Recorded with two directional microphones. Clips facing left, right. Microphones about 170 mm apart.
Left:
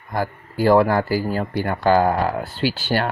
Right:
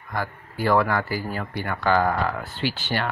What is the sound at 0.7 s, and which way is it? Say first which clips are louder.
Speech: left 6 dB; 35° left (ahead or behind).